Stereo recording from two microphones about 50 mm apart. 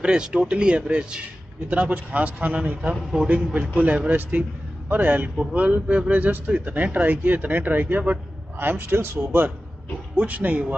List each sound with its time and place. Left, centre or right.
0.0 s a man's voice: centre; by 9.5 s right
10.1 s speech: right